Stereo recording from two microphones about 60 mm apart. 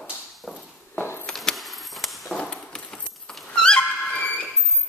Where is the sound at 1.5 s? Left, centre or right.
Centre.